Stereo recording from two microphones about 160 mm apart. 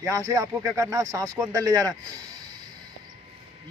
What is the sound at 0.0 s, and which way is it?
Speech, 20° right (ahead or behind).